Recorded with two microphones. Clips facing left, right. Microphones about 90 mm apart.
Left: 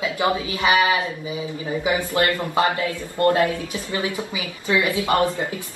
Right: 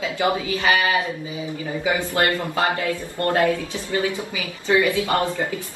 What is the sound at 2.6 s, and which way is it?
A woman's voice, 40° right (ahead or behind).